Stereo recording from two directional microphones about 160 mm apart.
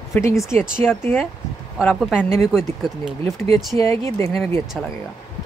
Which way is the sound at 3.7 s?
15° left (ahead or behind).